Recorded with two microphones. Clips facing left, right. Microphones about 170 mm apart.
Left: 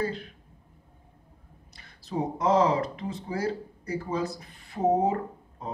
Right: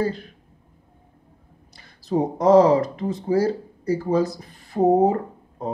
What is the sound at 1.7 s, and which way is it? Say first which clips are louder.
Speech: right 11 dB; 40° right (ahead or behind).